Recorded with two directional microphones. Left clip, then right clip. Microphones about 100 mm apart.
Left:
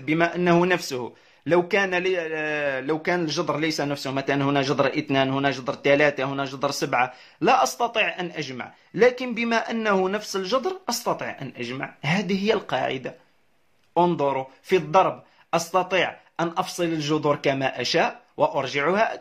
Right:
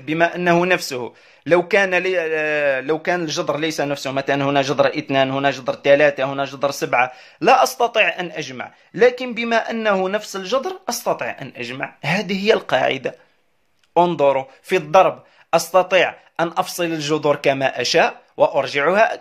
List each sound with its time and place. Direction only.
0.0 s speech: 35° right (ahead or behind)